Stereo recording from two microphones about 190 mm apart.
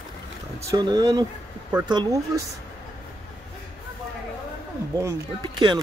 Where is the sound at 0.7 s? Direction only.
20° right (ahead or behind).